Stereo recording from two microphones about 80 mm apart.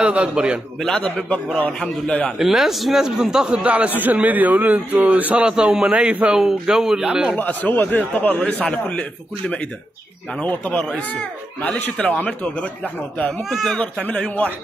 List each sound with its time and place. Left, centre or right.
0.0 s a man's voice: centre
0.8 s speech: centre
2.3 s a man's voice: centre
7.3 s a man's voice: left
10.4 s speech: centre
13.5 s speech: centre
14.0 s a man's voice: centre